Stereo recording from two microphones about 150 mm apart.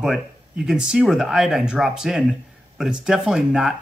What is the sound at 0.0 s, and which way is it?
Speech, centre (ahead or behind).